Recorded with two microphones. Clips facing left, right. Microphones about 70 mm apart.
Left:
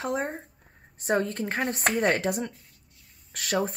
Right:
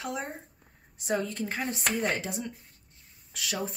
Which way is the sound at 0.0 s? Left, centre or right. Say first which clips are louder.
Left 6 dB; left.